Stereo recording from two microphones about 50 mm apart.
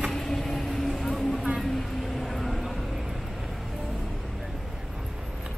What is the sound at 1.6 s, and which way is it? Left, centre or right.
Vehicle, centre.